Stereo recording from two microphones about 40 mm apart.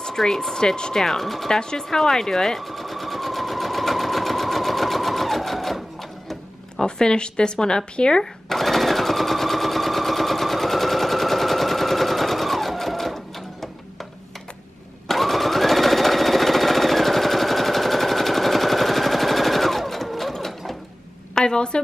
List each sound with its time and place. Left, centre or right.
0.0 s speech: centre
1.0 s speech: centre
1.5 s sewing machine: centre
6.8 s a sound: centre
15.0 s sewing machine: centre
21.4 s a sound: centre